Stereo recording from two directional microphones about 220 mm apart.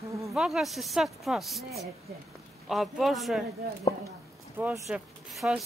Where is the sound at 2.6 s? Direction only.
Centre (ahead or behind).